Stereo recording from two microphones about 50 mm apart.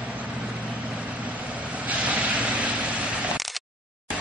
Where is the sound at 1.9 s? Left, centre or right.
Right.